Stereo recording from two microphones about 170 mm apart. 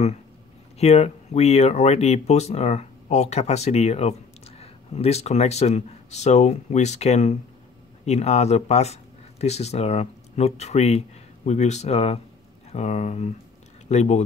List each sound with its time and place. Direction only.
0.7 s speech: 40° left (ahead or behind)